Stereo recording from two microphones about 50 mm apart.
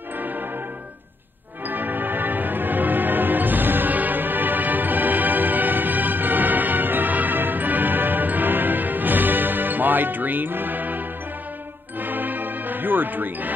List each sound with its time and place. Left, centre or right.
1.7 s music: right
12.0 s music: right